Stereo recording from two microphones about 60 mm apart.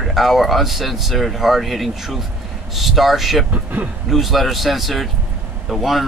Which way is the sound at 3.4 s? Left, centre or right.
Right.